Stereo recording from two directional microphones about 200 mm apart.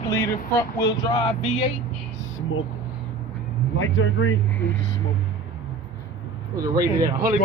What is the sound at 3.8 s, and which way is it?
Speech, 80° left.